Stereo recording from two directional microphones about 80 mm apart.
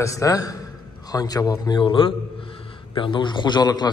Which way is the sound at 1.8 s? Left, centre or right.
Left.